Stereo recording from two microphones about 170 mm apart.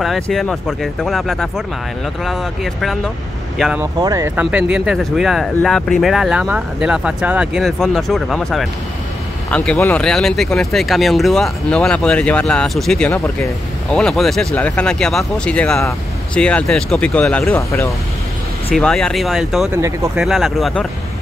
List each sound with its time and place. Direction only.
0.0 s speech: centre (ahead or behind)
3.8 s speech: 20° right (ahead or behind)
4.4 s speech: 5° right (ahead or behind)
17.6 s speech: 20° left (ahead or behind)
18.8 s speech: 5° left (ahead or behind)
19.7 s speech: 15° right (ahead or behind)
20.2 s speech: centre (ahead or behind)